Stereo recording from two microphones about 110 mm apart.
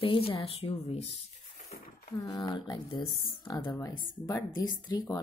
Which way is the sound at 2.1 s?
30° left (ahead or behind).